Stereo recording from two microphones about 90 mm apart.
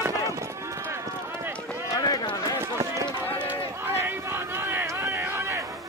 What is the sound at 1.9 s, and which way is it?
Run, 45° left (ahead or behind).